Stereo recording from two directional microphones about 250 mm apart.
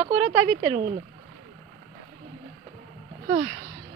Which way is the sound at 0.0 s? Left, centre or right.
Right.